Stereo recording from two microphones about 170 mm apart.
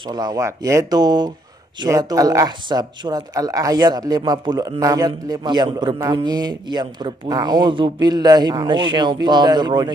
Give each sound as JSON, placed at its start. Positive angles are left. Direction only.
{"t": 0.0, "sound": "speech", "side_deg": -25}